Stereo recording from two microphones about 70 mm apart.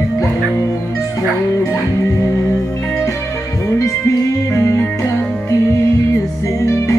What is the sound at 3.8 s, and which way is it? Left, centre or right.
Music, left.